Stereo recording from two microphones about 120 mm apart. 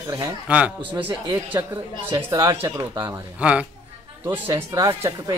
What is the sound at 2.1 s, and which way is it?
Speech, 35° right (ahead or behind).